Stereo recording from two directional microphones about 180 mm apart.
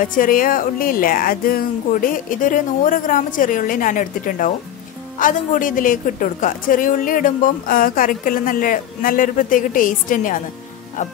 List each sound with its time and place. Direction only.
0.0 s a woman's voice: 50° left (ahead or behind)